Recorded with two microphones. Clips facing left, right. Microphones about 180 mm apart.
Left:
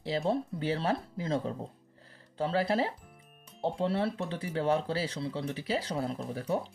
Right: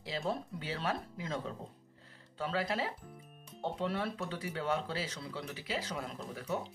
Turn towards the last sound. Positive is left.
turn(degrees=30)  # may be behind; listen again after turning